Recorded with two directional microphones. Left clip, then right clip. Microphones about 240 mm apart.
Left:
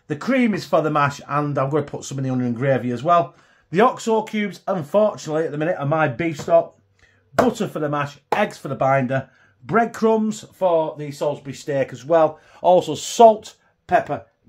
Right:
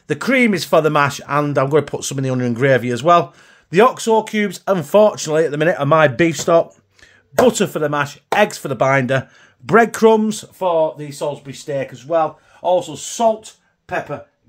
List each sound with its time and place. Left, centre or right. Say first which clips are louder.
0.1 s speech: right 5 dB; right
3.7 s speech: right 4 dB; right
7.4 s speech: right 7 dB; right
10.6 s speech: right 2 dB; centre; by 12.3 s left
12.6 s speech: left 1 dB; left